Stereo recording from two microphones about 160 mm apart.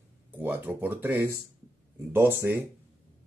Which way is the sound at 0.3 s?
10° right (ahead or behind).